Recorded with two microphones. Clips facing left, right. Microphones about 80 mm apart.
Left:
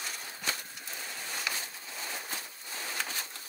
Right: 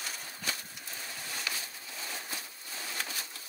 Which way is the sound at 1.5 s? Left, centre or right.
Left.